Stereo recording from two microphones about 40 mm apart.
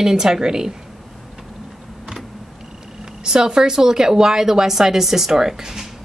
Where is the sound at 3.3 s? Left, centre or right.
Centre.